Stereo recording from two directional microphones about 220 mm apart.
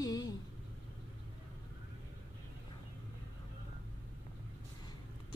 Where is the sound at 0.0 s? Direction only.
15° left (ahead or behind).